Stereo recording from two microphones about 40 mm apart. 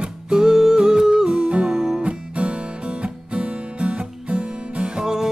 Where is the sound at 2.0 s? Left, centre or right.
Right.